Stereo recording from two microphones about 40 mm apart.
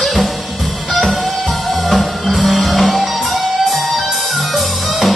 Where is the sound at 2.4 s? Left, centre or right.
Centre.